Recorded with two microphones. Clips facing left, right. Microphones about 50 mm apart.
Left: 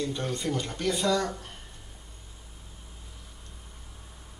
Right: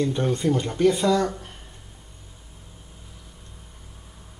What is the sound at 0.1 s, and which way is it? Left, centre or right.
Speech, right.